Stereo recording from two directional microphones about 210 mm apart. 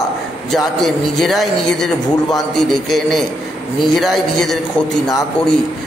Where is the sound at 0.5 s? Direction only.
Centre (ahead or behind).